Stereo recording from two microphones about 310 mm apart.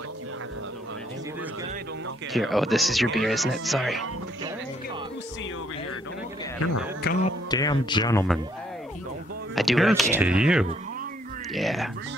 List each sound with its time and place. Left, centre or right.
2.3 s speech: centre
7.0 s music: left
7.5 s speech: centre
9.6 s speech: centre